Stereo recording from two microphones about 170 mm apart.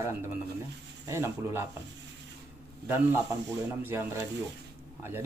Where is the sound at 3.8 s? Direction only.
15° right (ahead or behind).